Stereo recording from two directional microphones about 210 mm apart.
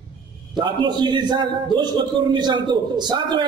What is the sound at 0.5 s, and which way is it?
A man's voice, 20° right (ahead or behind).